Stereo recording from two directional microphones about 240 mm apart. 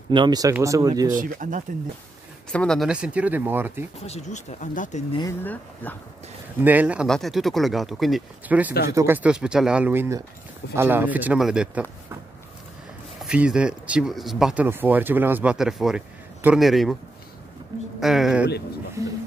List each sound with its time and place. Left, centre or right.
0.1 s speech: centre
1.1 s speech: right
2.5 s speech: centre
4.0 s speech: left
5.1 s speech: centre
6.6 s speech: centre
13.2 s speech: centre
18.0 s speech: centre
19.0 s music: centre